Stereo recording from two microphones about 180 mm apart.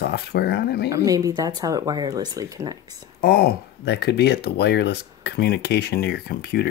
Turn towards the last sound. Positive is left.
turn(degrees=65)  # may be behind; listen again after turning